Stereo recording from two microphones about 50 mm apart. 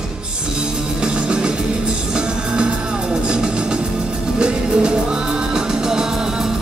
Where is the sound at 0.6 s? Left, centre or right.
Centre.